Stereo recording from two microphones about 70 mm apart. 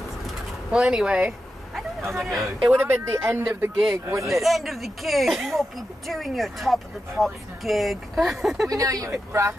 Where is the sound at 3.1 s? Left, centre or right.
Right.